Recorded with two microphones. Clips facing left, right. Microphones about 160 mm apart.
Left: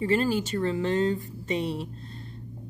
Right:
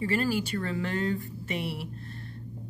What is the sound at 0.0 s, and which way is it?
A woman's voice, 25° left (ahead or behind).